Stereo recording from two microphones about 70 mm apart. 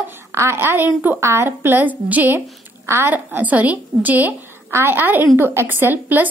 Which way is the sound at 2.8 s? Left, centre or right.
Right.